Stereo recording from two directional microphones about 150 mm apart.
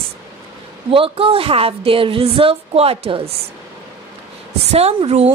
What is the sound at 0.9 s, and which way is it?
Speech, 40° right (ahead or behind).